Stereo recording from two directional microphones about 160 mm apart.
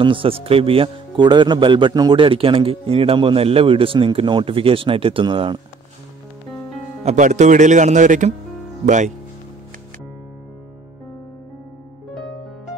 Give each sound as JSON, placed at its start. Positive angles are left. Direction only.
{"t": 0.0, "sound": "speech", "side_deg": -35}
{"t": 7.0, "sound": "speech", "side_deg": -50}